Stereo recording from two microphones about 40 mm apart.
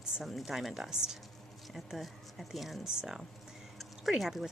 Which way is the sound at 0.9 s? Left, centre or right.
Centre.